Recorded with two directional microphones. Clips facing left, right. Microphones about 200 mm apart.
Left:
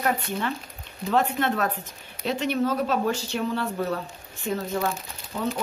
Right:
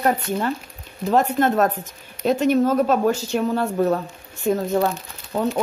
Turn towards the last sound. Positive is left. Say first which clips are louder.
# right 6 dB
turn(degrees=-60)  # may be behind; listen again after turning